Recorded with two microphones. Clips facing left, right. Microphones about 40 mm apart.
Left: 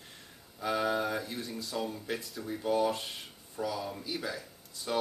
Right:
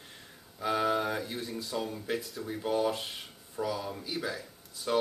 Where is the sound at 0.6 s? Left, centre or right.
Centre.